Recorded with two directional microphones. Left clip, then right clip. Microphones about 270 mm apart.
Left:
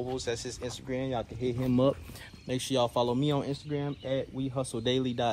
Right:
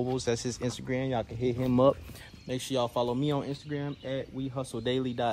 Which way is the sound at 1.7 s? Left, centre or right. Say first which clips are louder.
Right 3 dB; right.